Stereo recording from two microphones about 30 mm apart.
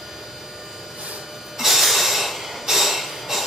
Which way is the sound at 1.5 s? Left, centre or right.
Centre.